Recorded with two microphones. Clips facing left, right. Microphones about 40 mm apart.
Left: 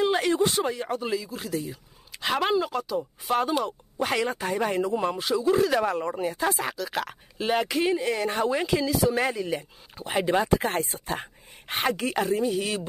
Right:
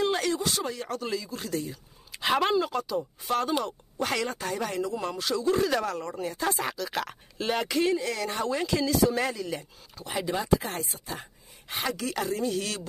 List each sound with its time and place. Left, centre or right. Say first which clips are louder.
0.0 s speech: left 4 dB; centre
5.9 s speech: left 5 dB; left
6.3 s speech: left 2 dB; centre
7.9 s speech: left 3 dB; left
8.7 s speech: right 1 dB; centre; by 10.0 s left
10.0 s speech: left 5 dB; left
12.1 s speech: left 4 dB; left